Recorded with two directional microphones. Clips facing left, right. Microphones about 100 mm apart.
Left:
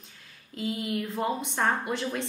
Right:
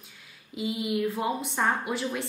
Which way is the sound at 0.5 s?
10° right (ahead or behind).